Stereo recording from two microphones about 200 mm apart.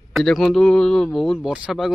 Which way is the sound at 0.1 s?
Centre (ahead or behind).